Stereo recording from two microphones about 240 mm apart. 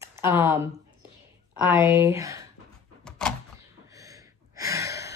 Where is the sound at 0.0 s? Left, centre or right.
Centre.